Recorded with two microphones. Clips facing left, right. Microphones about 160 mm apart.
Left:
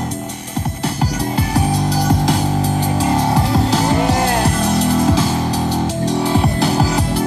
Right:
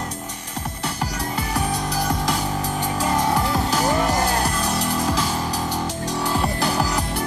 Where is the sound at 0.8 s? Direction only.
30° left (ahead or behind).